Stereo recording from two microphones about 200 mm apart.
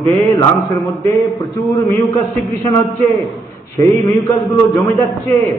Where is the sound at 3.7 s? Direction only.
15° left (ahead or behind).